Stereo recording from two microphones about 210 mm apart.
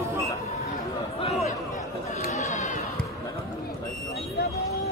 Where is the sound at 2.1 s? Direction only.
35° left (ahead or behind).